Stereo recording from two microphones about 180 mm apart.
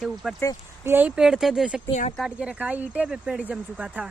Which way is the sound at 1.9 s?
40° left (ahead or behind).